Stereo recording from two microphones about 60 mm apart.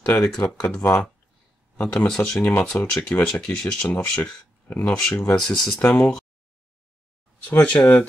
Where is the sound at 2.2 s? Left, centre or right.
Left.